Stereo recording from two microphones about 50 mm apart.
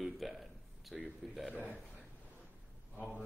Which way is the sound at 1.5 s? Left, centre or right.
Left.